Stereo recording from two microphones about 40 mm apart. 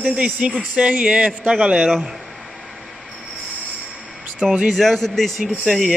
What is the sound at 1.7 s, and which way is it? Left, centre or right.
Speech, centre.